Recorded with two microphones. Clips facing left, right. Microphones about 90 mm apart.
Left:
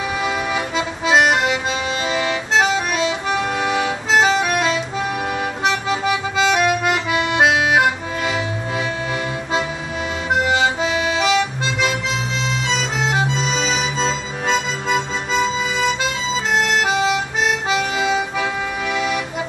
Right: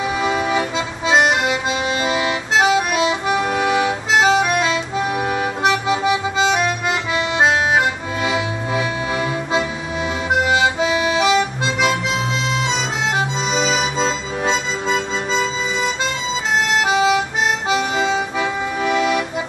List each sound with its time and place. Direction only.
0.7 s music: centre (ahead or behind)
3.3 s accordion: 5° right (ahead or behind)
3.7 s music: 5° right (ahead or behind)
5.2 s accordion: 10° right (ahead or behind); by 7.8 s 10° left (ahead or behind)
8.2 s music: 5° right (ahead or behind)
10.4 s music: 5° right (ahead or behind)
12.6 s accordion: 5° right (ahead or behind)
14.5 s music: 5° left (ahead or behind)
16.7 s harmonica: centre (ahead or behind)
18.1 s accordion: 35° right (ahead or behind)